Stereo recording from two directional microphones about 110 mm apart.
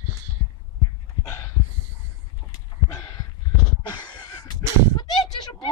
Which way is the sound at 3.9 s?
40° left (ahead or behind).